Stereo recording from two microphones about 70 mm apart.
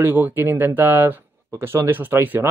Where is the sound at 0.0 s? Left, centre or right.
Right.